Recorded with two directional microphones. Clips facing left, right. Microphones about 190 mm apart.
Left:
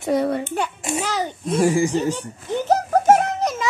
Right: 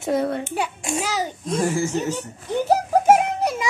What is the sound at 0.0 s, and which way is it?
A child's voice, centre (ahead or behind).